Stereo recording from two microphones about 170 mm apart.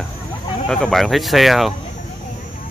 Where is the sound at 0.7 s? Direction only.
Centre (ahead or behind).